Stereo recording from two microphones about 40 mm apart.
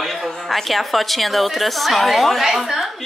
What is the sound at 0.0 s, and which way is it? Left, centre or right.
A woman's voice, centre.